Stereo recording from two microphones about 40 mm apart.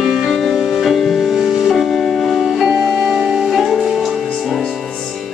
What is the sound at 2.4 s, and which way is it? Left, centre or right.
Music, centre.